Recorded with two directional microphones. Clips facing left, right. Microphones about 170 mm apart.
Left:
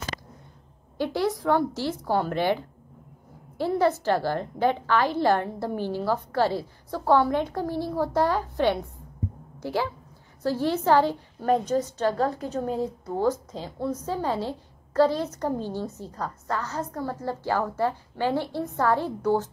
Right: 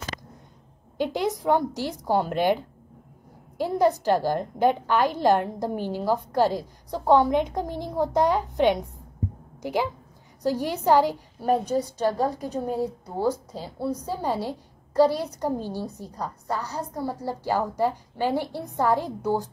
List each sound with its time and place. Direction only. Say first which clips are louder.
0.9 s a woman's voice: even; 20° right (ahead or behind)